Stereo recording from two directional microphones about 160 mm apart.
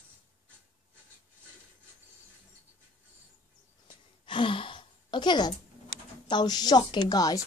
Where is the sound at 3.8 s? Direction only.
30° left (ahead or behind).